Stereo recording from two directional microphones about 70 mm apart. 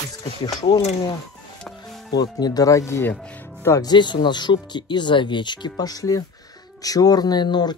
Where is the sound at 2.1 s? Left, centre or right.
Left.